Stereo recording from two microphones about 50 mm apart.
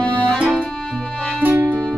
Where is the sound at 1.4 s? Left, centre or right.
Right.